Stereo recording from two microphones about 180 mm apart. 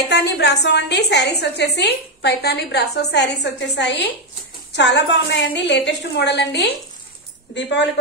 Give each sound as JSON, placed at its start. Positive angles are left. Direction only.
{"t": 0.1, "sound": "a woman's voice", "side_deg": 70}